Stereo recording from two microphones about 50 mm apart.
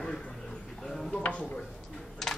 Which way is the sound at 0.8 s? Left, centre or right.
Centre.